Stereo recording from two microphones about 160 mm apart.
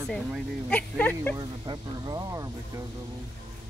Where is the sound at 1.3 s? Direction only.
25° right (ahead or behind).